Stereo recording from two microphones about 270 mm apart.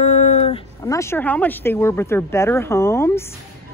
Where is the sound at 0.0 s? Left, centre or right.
Left.